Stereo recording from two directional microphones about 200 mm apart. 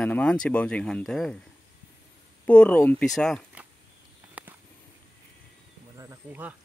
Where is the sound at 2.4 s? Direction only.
5° left (ahead or behind).